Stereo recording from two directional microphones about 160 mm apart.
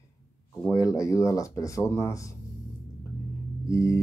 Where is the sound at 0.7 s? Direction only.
20° left (ahead or behind).